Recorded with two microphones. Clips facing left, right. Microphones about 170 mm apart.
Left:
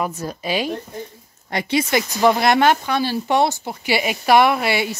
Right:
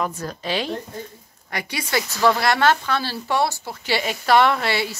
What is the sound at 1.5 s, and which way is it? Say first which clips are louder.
Speech: left 6 dB; 25° left (ahead or behind).